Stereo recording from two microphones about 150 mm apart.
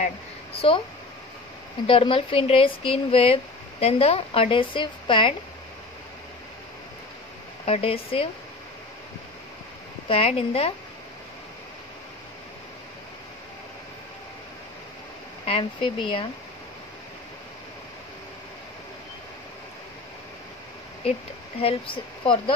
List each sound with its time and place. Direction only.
0.6 s a woman's voice: 35° left (ahead or behind)
1.9 s a woman's voice: 35° left (ahead or behind)
7.6 s a woman's voice: 40° left (ahead or behind)
10.0 s a woman's voice: 40° left (ahead or behind)
15.4 s a woman's voice: 35° left (ahead or behind)
21.5 s a woman's voice: 35° left (ahead or behind)